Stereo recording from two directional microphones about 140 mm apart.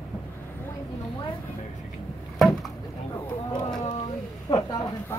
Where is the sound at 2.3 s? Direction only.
5° left (ahead or behind).